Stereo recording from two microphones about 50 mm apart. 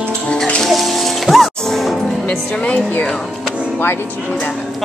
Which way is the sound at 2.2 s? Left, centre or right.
Left.